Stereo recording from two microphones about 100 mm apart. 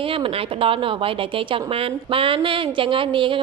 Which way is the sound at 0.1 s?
65° right (ahead or behind).